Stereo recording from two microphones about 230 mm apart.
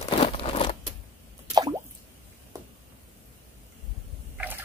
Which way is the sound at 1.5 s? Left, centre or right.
Centre.